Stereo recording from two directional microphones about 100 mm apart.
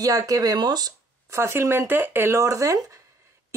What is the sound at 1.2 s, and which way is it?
Speech, 25° right (ahead or behind).